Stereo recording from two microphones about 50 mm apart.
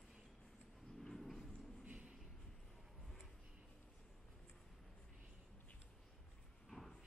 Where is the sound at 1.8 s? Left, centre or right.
Right.